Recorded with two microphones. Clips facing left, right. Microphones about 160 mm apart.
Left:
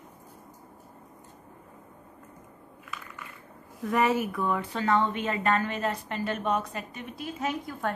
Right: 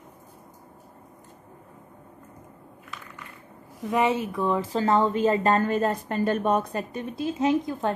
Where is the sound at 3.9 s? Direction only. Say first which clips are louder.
Right 1 dB; 20° right (ahead or behind); by 7.0 s 40° right (ahead or behind).